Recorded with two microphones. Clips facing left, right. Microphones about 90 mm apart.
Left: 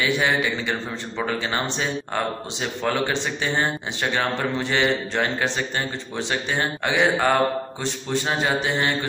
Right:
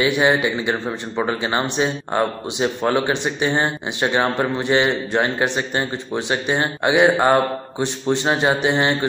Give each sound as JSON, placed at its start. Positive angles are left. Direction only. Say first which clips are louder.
{"t": 0.0, "sound": "a man's voice", "louder": "right 5 dB", "side_deg": -20}
{"t": 8.4, "sound": "speech", "louder": "right 5 dB", "side_deg": -20}